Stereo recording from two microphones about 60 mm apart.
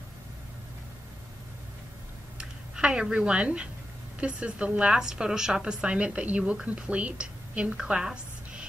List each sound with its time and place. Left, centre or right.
2.3 s a woman's voice: centre